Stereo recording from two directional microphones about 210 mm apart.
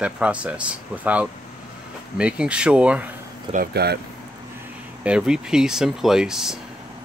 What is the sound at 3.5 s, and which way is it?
Speech, 45° right (ahead or behind).